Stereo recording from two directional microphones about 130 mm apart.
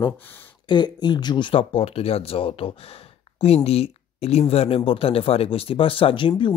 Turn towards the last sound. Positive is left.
turn(degrees=40)  # may be behind; listen again after turning